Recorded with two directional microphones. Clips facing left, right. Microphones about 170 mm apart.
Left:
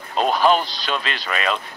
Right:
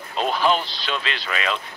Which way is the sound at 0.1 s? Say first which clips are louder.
Left 4 dB; 45° left (ahead or behind).